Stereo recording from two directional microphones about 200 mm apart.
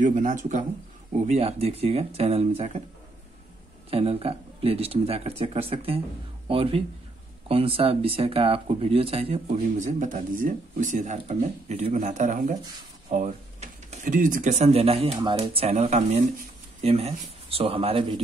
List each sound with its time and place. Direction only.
0.0 s speech: 40° right (ahead or behind)
3.9 s speech: 30° right (ahead or behind)